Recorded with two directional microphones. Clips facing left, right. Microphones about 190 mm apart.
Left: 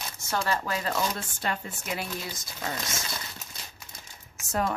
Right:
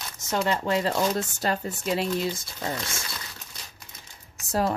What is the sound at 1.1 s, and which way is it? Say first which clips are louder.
Speech: right 6 dB; 40° right (ahead or behind).